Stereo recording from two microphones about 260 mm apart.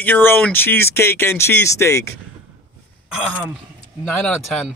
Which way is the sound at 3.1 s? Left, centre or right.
Centre.